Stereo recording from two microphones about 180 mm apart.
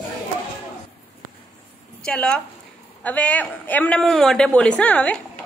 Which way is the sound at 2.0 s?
5° left (ahead or behind).